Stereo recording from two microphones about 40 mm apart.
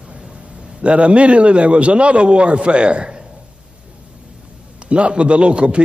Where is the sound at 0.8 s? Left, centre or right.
Right.